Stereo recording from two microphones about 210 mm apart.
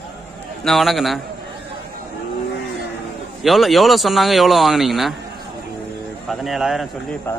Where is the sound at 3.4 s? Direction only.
Centre (ahead or behind).